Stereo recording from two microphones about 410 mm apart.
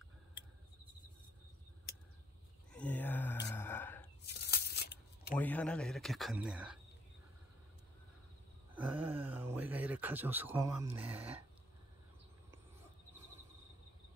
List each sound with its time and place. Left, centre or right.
2.7 s a sound: centre
4.3 s tearing: left
5.3 s speech: centre
8.7 s speech: centre